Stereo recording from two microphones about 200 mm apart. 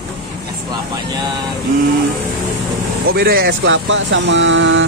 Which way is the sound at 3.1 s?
50° right (ahead or behind).